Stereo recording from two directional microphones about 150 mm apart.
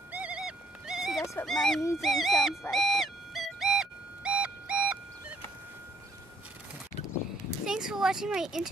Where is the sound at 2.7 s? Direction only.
Centre (ahead or behind).